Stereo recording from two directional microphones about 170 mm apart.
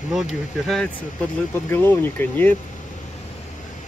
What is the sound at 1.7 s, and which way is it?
Speech, 10° left (ahead or behind).